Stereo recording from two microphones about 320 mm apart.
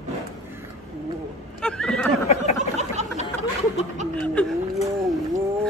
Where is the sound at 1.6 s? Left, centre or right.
Centre.